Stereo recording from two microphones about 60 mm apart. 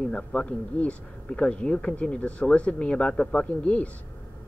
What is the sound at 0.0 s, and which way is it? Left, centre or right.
A man's voice, centre.